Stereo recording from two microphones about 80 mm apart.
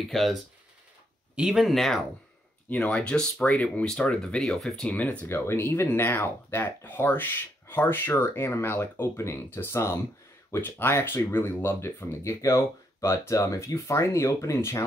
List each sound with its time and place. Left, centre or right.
0.1 s speech: centre
2.7 s speech: centre
4.9 s speech: centre
5.3 s speech: left